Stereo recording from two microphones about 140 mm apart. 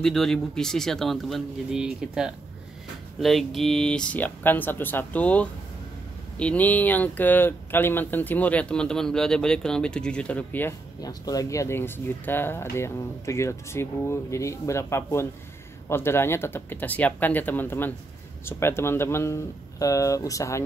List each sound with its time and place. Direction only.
0.0 s a man's voice: 5° left (ahead or behind)
11.0 s speech: 25° left (ahead or behind)